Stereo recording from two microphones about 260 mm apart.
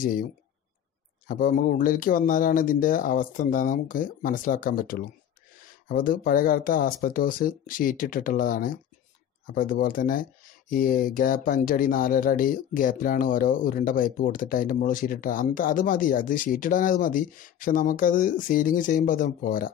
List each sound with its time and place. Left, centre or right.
0.0 s speech: left